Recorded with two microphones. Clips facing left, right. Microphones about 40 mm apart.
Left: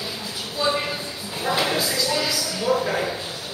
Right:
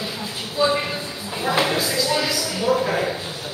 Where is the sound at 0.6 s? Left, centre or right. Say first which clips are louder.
Right 3 dB; centre.